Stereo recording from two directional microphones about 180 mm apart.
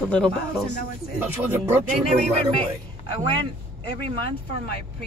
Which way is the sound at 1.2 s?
10° right (ahead or behind).